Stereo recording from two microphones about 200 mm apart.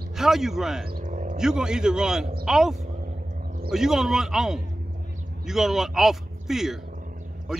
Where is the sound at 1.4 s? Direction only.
5° right (ahead or behind).